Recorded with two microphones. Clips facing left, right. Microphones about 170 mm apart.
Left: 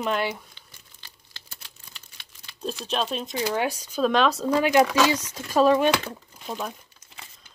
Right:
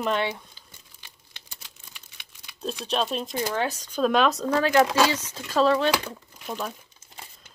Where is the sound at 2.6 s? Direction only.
Centre (ahead or behind).